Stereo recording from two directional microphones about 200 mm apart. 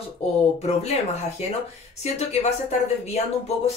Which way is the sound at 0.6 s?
35° left (ahead or behind).